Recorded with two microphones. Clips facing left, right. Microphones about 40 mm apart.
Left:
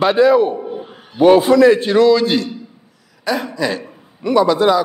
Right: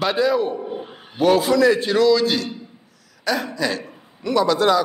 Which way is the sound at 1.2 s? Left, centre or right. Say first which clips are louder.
Left 6 dB; left.